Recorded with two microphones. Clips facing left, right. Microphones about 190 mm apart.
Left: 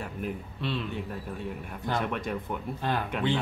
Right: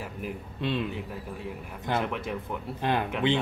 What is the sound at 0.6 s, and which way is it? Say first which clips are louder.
Speech: right 5 dB; 15° right (ahead or behind).